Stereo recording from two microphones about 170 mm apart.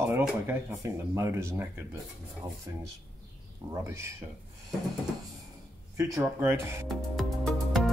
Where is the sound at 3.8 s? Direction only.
15° right (ahead or behind).